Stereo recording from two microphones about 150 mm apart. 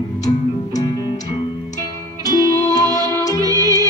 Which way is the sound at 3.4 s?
25° right (ahead or behind).